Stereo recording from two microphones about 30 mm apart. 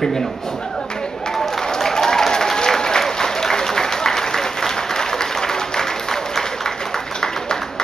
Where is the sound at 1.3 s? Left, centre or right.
Centre.